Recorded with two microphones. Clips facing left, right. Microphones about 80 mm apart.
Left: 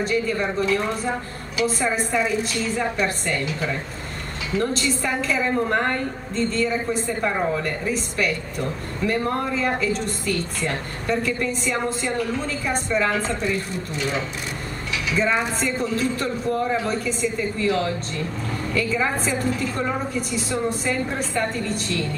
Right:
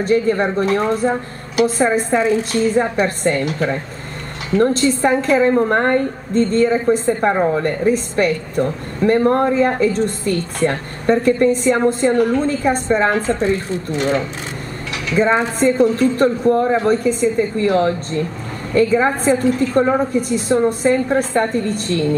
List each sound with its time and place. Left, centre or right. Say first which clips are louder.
0.0 s a woman's voice: right 7 dB; right
2.0 s a woman's voice: right 6 dB; right
4.6 s a woman's voice: right 9 dB; right
15.6 s a woman's voice: right 10 dB; right